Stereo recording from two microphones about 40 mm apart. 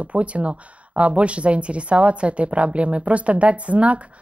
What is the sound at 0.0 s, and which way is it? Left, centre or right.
Speech, right.